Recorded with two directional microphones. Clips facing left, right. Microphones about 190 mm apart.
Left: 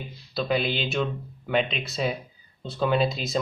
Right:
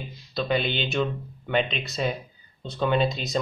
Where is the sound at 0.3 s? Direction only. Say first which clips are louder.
Even; 5° left (ahead or behind).